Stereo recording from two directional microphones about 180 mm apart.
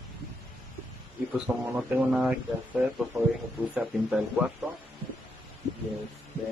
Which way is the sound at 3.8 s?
5° right (ahead or behind).